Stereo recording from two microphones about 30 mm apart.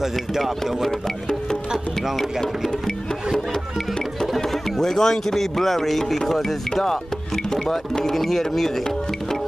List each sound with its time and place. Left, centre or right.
0.0 s speech: centre
4.4 s music: centre
4.7 s speech: centre
6.7 s speech: left